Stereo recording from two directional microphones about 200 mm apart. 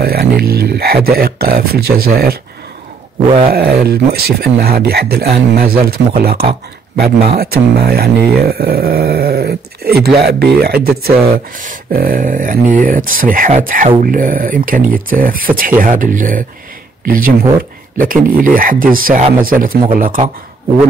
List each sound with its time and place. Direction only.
0.0 s speech: 50° right (ahead or behind)
3.5 s speech: 50° right (ahead or behind)